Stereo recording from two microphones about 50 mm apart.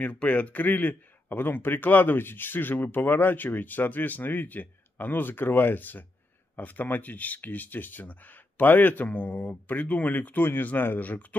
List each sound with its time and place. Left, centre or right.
0.0 s a man's voice: left